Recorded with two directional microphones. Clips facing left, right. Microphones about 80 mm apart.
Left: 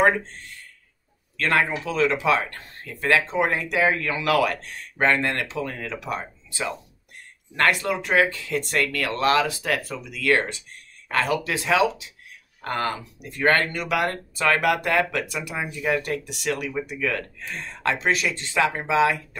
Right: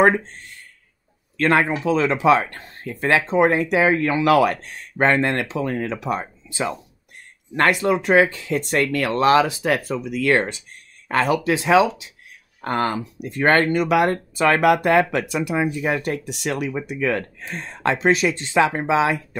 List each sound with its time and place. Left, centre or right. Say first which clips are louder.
1.3 s speech: right 4 dB; right